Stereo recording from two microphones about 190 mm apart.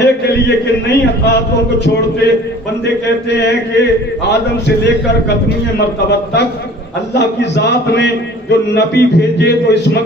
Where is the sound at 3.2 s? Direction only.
65° left (ahead or behind).